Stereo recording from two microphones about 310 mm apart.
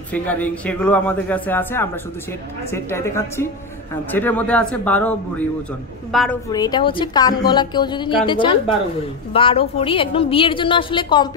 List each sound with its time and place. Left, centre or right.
0.1 s a woman's voice: centre
6.5 s a woman's voice: centre